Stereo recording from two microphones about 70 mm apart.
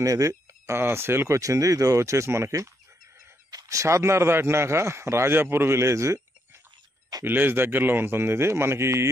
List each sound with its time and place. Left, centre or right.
0.0 s speech: right
0.7 s speech: right
7.2 s speech: right